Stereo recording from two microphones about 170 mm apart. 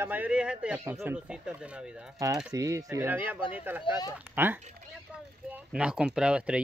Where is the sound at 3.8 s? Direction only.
25° left (ahead or behind).